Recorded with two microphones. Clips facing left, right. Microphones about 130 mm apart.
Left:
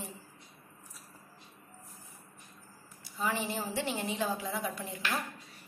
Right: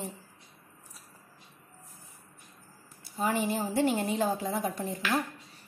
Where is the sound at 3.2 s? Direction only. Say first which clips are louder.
Right 5 dB; 45° right (ahead or behind).